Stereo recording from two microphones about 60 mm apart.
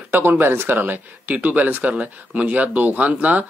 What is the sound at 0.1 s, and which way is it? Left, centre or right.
Speech, right.